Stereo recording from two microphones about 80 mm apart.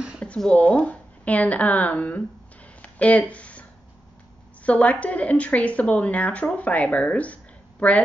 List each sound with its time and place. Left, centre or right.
0.2 s speech: centre
2.8 s a sound: centre
4.6 s speech: centre